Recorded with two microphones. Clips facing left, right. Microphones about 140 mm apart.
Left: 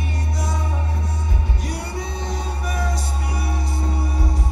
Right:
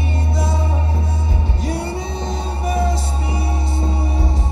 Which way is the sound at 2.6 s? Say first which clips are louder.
Right 8 dB; 25° right (ahead or behind).